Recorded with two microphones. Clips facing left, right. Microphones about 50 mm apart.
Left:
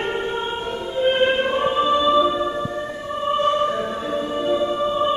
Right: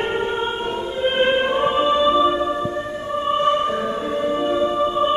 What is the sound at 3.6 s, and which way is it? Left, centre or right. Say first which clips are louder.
Music: right 1 dB; right.